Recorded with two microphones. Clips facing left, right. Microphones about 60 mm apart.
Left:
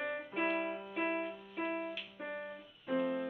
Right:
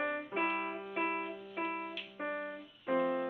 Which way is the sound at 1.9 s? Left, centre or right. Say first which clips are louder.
Right 3 dB; right.